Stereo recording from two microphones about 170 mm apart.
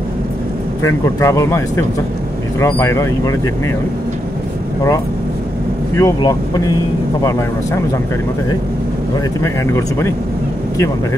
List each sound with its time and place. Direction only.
1.0 s speech: 20° left (ahead or behind)
5.9 s speech: 20° left (ahead or behind)
9.7 s speech: 15° left (ahead or behind)